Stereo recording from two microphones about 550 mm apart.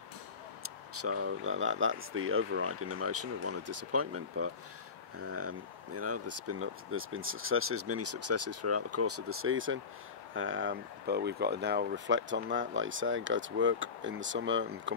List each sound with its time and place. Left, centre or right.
0.9 s speech: right